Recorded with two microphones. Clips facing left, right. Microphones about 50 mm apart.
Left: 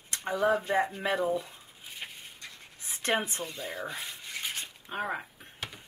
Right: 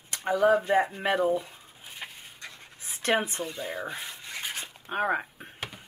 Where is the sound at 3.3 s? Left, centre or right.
Centre.